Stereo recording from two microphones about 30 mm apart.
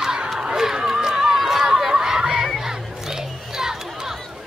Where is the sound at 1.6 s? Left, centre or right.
Right.